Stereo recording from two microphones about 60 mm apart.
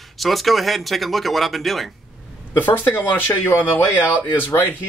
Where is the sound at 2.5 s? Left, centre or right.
Left.